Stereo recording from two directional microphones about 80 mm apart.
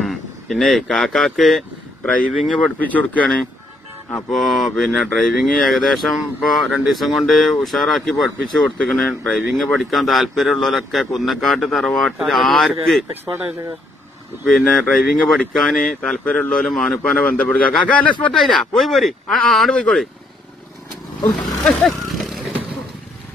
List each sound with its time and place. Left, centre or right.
0.0 s speech: centre
2.0 s speech: centre
4.3 s speech: centre
9.3 s speech: centre
14.4 s speech: centre
16.6 s speech: centre
17.2 s speech: left
18.3 s speech: centre
19.7 s speech: centre
21.3 s vehicle: centre